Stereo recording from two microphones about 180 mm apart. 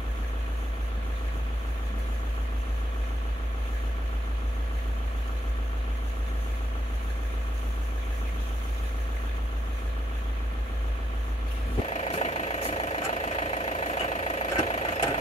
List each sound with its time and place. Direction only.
11.9 s vehicle: 35° left (ahead or behind)